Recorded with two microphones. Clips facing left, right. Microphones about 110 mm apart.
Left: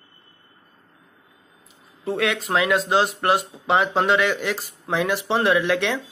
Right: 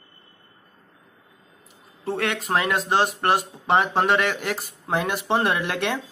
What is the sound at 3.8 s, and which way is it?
Speech, 45° right (ahead or behind).